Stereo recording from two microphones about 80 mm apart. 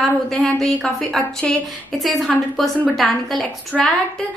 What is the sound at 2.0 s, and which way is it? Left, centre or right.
A woman's voice, centre.